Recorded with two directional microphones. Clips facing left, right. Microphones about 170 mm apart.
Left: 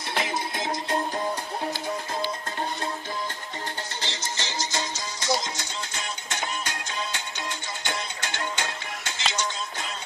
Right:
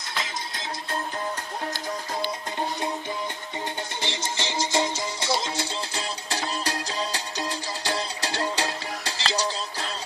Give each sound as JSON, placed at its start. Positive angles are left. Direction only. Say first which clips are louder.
{"t": 0.6, "sound": "music", "louder": "left 4 dB", "side_deg": 20}
{"t": 4.0, "sound": "music", "louder": "right 5 dB", "side_deg": -25}